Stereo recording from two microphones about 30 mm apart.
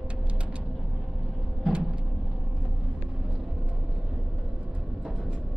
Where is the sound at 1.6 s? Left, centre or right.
Right.